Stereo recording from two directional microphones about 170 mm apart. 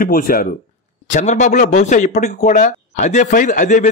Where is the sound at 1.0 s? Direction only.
45° left (ahead or behind).